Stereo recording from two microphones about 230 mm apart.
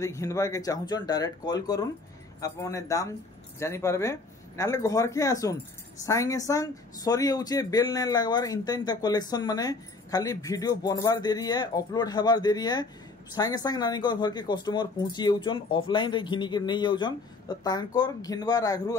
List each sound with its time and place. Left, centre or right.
0.0 s speech: centre